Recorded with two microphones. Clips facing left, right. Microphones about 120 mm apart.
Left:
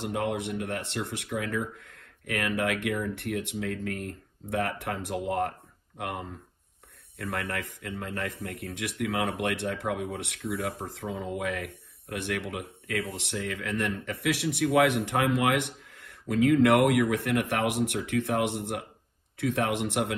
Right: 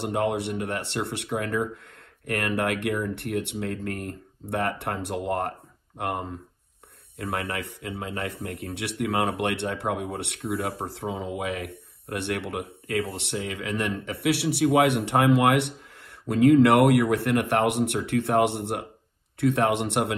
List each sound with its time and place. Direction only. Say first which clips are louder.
0.0 s speech: right 4 dB; 60° right (ahead or behind)
9.0 s speech: right 4 dB; 60° right (ahead or behind)